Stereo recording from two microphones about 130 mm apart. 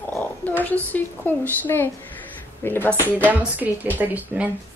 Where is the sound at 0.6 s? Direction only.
15° left (ahead or behind).